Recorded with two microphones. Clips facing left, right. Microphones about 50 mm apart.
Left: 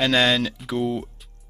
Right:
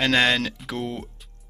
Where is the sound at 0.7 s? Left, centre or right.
Right.